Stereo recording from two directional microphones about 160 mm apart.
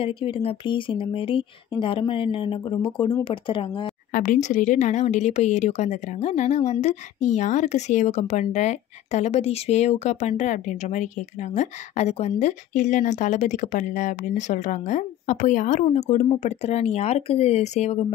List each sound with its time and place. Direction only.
0.0 s speech: 35° left (ahead or behind)
4.1 s a woman's voice: 55° left (ahead or behind)